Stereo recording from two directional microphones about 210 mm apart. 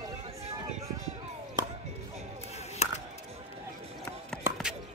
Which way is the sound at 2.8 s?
30° left (ahead or behind).